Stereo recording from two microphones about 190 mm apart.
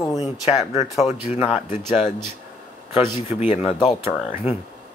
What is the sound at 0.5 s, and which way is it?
Speech, 15° right (ahead or behind).